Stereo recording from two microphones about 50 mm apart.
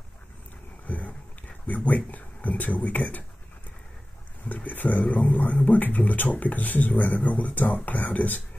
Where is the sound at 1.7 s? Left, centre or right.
Left.